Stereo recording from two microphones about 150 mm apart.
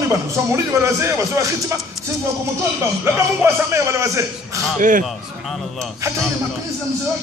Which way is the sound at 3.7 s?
20° right (ahead or behind).